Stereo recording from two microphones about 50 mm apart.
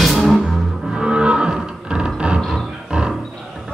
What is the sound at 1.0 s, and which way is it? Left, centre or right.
Music, centre.